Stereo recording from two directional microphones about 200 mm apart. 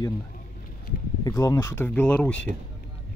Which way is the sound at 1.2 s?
20° left (ahead or behind).